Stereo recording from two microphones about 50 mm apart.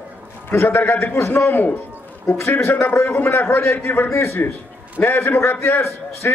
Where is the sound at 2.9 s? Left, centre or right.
Left.